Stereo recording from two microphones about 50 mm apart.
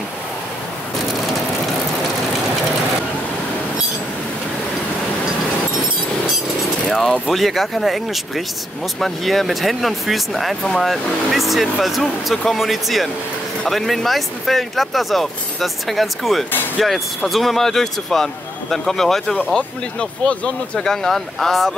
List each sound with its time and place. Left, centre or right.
6.9 s speech: centre
19.3 s speech: centre
20.9 s speech: centre